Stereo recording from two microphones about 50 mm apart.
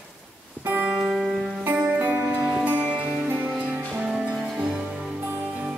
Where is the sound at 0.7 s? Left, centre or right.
Right.